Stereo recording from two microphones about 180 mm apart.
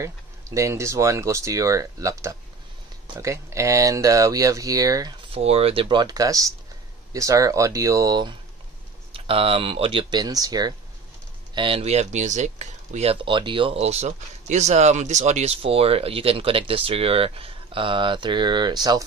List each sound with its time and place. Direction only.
0.6 s speech: 15° right (ahead or behind)
5.3 s speech: 35° right (ahead or behind)